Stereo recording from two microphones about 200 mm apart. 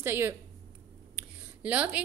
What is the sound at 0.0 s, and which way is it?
Speech, 10° right (ahead or behind).